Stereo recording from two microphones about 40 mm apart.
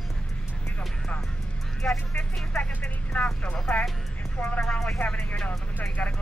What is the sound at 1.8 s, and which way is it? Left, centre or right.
Speech, left.